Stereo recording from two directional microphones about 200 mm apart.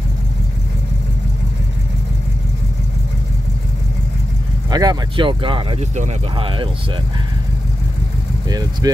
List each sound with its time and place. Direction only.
4.6 s speech: 20° right (ahead or behind)
8.5 s speech: 20° right (ahead or behind)